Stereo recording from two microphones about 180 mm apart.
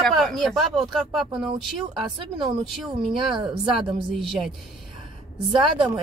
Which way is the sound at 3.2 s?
25° right (ahead or behind).